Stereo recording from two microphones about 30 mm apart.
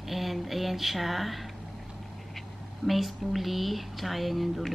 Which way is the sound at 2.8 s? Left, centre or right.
Centre.